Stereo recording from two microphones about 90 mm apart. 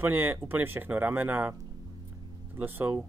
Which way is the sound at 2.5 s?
20° right (ahead or behind).